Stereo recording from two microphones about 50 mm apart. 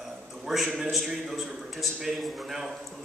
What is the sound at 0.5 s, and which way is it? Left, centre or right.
A man's voice, centre.